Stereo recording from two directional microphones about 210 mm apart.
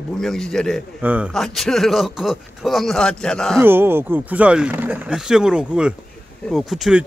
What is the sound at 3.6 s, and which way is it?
Speech, 10° right (ahead or behind).